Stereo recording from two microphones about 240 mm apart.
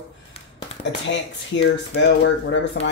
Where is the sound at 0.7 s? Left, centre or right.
Left.